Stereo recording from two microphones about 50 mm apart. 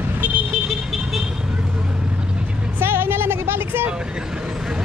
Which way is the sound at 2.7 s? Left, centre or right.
Right.